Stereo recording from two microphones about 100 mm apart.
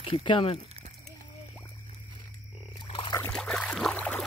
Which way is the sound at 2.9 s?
55° left (ahead or behind).